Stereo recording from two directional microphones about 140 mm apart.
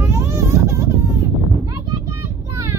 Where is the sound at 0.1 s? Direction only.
20° right (ahead or behind).